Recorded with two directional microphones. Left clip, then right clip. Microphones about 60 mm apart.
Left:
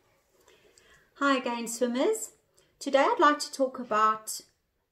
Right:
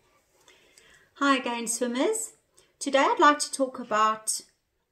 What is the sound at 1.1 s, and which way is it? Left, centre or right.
Speech, right.